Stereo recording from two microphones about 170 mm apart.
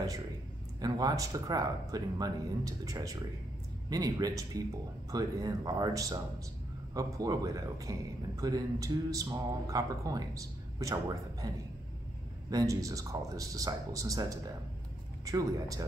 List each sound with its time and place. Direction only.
0.7 s speech: 20° right (ahead or behind)